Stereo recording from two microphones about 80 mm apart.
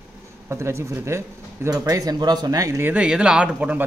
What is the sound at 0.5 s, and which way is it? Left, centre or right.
Speech, right.